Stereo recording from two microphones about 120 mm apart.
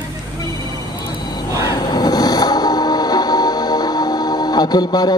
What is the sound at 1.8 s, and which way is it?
Music, 35° left (ahead or behind).